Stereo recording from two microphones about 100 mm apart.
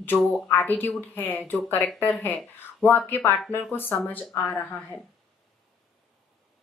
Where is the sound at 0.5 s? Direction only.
20° left (ahead or behind).